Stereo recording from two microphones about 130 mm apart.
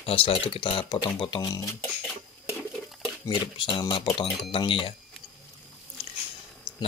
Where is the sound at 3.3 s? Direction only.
40° left (ahead or behind).